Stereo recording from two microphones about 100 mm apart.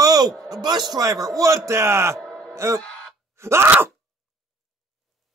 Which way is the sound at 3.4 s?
25° right (ahead or behind).